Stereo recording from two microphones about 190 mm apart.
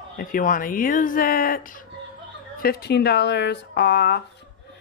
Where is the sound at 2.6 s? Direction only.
55° left (ahead or behind).